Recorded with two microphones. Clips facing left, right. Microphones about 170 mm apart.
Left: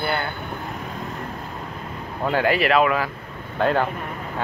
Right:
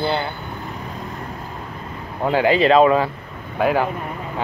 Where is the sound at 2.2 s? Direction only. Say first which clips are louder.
Right 4 dB; 15° right (ahead or behind).